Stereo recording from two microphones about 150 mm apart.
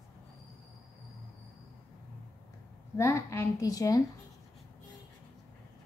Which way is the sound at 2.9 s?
20° left (ahead or behind).